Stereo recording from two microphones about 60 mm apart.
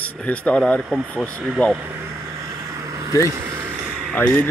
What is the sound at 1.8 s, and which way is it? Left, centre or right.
Speech, right.